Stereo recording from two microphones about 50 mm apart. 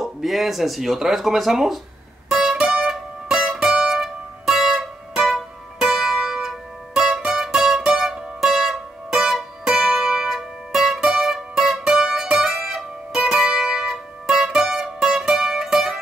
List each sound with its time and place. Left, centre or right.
0.0 s speech: centre
2.2 s music: centre
2.7 s music: centre
3.3 s music: centre
13.4 s music: centre